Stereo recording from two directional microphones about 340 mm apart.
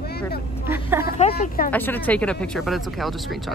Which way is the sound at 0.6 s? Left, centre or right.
Centre.